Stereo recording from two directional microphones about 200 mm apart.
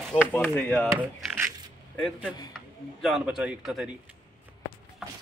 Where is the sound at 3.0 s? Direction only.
Centre (ahead or behind).